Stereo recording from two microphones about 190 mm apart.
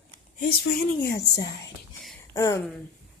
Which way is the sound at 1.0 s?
60° left (ahead or behind).